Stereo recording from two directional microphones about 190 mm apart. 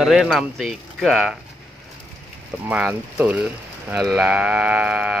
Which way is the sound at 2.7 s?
5° right (ahead or behind).